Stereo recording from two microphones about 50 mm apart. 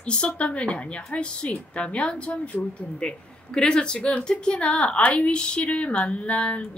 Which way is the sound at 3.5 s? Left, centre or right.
Centre.